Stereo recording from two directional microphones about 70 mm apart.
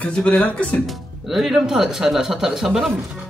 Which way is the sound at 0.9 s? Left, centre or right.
Centre.